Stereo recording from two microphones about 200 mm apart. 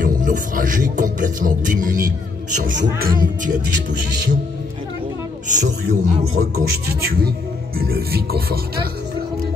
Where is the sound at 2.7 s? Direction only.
55° right (ahead or behind).